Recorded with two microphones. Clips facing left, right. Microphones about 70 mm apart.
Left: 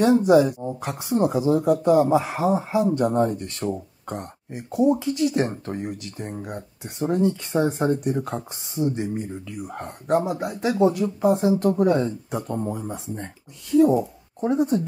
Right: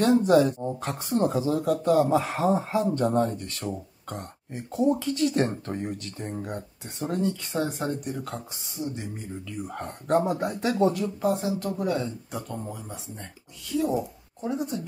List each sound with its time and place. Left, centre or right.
0.0 s speech: centre
3.3 s speech: left
3.6 s speech: centre
10.9 s speech: centre
11.7 s speech: left